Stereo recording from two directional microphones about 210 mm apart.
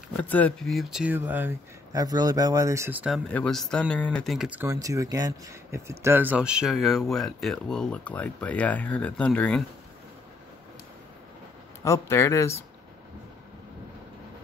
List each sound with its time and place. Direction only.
0.2 s speech: 5° left (ahead or behind)
3.3 s speech: 5° left (ahead or behind)
11.8 s a man's voice: 15° left (ahead or behind)